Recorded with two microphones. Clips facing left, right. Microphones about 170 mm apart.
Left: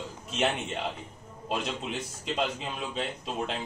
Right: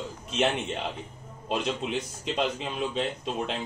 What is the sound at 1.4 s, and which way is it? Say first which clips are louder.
Speech: right 3 dB; centre (ahead or behind).